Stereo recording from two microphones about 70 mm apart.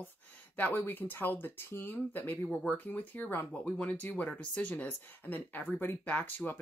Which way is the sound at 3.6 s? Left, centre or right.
Centre.